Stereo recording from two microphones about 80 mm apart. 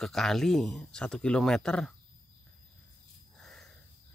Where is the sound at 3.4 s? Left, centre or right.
Centre.